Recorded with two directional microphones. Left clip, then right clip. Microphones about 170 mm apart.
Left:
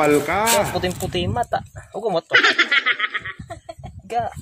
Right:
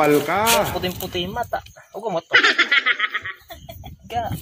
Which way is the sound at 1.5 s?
25° left (ahead or behind).